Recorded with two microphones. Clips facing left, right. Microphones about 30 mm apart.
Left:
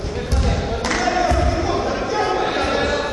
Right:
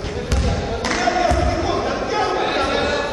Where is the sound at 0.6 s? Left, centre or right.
Centre.